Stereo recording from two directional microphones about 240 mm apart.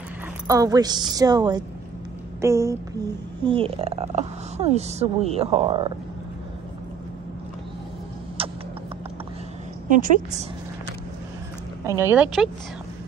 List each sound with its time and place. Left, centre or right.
0.5 s a woman's voice: centre
8.4 s a sound: right
9.8 s a woman's voice: right
12.0 s a woman's voice: centre